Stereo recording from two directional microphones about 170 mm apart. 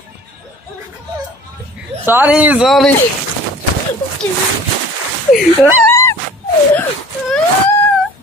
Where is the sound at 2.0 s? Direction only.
10° right (ahead or behind).